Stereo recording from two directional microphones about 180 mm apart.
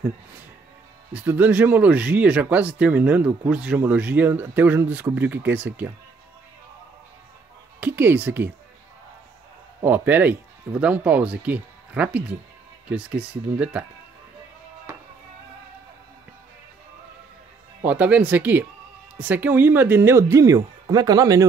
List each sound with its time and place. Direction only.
1.1 s speech: 10° right (ahead or behind)
7.8 s speech: 10° right (ahead or behind)
9.8 s speech: 10° right (ahead or behind)
14.9 s music: 15° right (ahead or behind)
17.8 s a man's voice: 10° right (ahead or behind)